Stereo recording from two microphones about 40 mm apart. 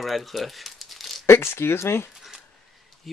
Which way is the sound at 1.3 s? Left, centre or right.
Left.